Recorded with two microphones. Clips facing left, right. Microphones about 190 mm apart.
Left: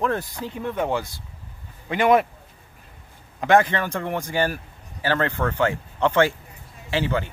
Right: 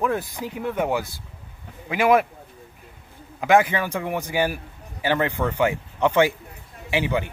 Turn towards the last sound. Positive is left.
turn(degrees=-15)  # may be behind; listen again after turning